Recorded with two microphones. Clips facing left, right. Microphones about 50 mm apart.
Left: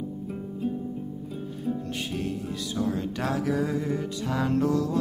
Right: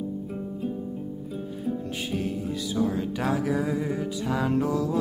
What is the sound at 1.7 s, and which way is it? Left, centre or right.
Music, centre.